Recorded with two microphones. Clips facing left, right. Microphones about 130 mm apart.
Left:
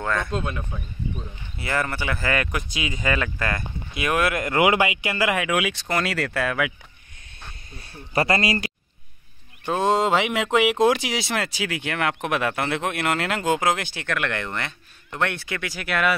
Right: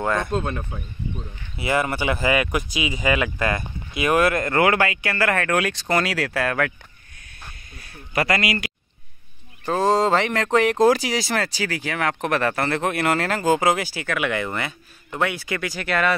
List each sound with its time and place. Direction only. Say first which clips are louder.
0.0 s speech: right 3 dB; 15° right (ahead or behind)
0.3 s speech: right 3 dB; 35° right (ahead or behind)
0.7 s speech: even; 15° right (ahead or behind)
4.0 s speech: right 4 dB; centre (ahead or behind)
7.7 s speech: left 1 dB; 30° left (ahead or behind)
9.7 s speech: right 2 dB; centre (ahead or behind)